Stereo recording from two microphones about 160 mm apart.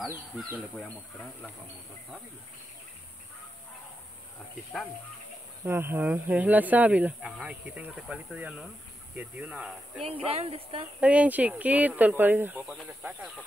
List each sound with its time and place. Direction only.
5.7 s speech: 15° right (ahead or behind)
10.0 s speech: 40° right (ahead or behind)
11.0 s speech: 10° right (ahead or behind)
12.6 s speech: centre (ahead or behind)